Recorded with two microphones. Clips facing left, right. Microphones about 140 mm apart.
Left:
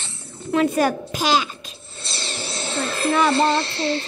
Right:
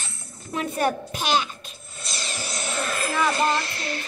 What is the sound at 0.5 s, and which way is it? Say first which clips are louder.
A child's voice: left 6 dB; 90° left.